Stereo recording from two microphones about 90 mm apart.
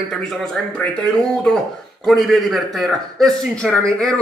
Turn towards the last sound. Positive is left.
turn(degrees=5)  # may be behind; listen again after turning